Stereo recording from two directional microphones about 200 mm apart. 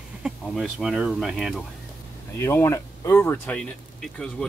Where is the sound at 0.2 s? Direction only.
Centre (ahead or behind).